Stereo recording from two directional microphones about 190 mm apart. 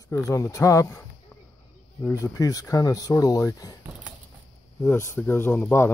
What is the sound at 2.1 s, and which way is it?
Speech, 15° left (ahead or behind).